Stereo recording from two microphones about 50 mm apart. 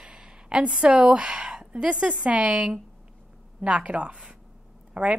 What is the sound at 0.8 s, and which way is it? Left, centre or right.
A woman's voice, right.